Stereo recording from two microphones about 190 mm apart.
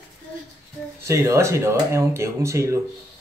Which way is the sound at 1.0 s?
15° right (ahead or behind).